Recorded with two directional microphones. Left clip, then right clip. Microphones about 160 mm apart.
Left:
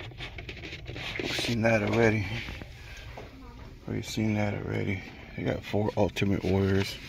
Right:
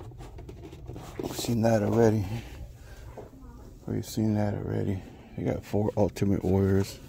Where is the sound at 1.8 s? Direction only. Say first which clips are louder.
Right 1 dB; 30° right (ahead or behind).